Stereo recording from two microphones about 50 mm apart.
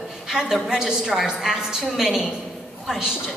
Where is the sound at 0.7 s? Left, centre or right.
Centre.